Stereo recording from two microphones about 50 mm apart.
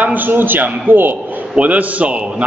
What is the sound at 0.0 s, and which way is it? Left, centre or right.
A man's voice, right.